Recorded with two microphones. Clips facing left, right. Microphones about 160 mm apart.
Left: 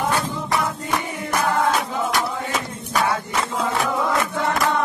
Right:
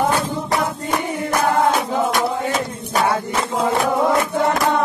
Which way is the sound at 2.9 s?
35° right (ahead or behind).